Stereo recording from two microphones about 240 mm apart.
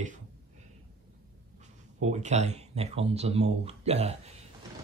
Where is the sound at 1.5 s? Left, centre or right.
Right.